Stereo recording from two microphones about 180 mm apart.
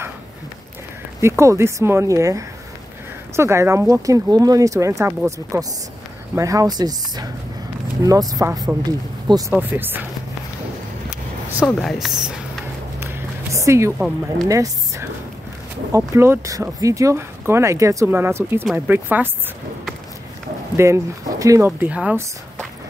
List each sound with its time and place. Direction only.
1.2 s speech: 15° right (ahead or behind)
9.5 s speech: 10° right (ahead or behind)
11.6 s speech: centre (ahead or behind)
13.0 s a sound: 15° right (ahead or behind)
14.5 s speech: 20° right (ahead or behind)
16.1 s speech: 15° right (ahead or behind)
20.7 s speech: 15° right (ahead or behind)